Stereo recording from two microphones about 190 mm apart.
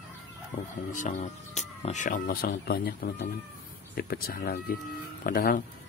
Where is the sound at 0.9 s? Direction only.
40° left (ahead or behind).